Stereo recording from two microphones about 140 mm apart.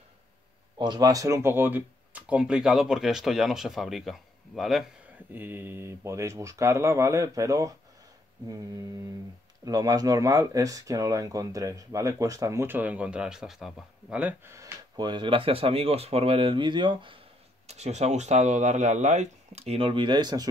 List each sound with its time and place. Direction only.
0.7 s speech: 30° right (ahead or behind); by 4.8 s centre (ahead or behind)
5.3 s speech: 15° right (ahead or behind)
14.2 s speech: 20° right (ahead or behind); by 17.2 s 35° right (ahead or behind)
17.6 s speech: 50° right (ahead or behind); by 20.4 s 30° right (ahead or behind)